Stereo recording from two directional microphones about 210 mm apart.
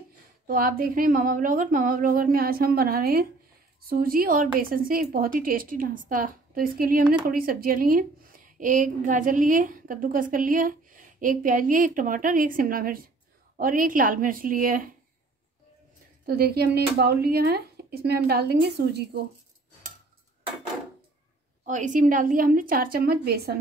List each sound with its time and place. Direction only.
0.5 s a woman's voice: 40° right (ahead or behind)
16.3 s a woman's voice: 45° right (ahead or behind)
21.6 s a woman's voice: 35° right (ahead or behind)